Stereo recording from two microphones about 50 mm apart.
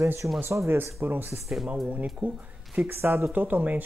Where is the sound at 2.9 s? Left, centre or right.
Right.